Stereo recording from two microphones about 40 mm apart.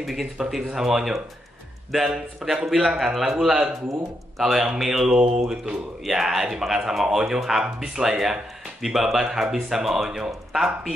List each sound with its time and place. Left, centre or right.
0.0 s speech: centre
4.4 s speech: centre
5.1 s mantra: right
6.0 s speech: centre